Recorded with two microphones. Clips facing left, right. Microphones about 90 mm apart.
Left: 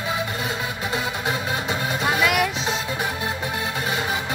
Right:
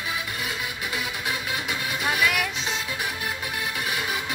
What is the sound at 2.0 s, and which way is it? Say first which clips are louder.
Music: left 2 dB; 25° left (ahead or behind).